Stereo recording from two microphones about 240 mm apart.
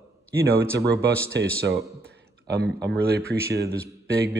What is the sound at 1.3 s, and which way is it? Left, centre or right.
Speech, right.